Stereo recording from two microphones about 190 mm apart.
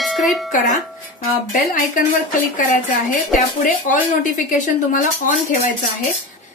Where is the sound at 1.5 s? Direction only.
45° left (ahead or behind).